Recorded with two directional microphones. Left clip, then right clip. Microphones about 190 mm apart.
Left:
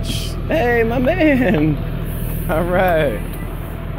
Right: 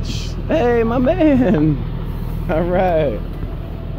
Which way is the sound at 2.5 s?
30° right (ahead or behind).